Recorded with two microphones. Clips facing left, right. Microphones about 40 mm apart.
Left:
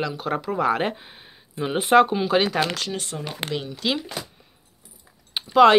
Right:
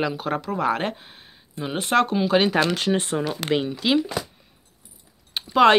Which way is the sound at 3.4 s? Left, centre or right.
Left.